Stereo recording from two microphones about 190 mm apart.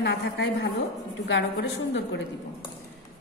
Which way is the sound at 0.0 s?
65° left (ahead or behind).